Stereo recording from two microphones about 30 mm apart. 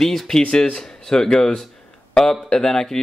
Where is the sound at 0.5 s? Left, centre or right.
Left.